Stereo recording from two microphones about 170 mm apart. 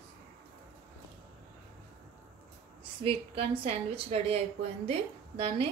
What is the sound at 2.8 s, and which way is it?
A woman's voice, 30° right (ahead or behind).